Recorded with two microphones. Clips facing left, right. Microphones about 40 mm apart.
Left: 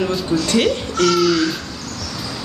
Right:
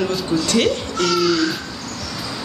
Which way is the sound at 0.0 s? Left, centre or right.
Centre.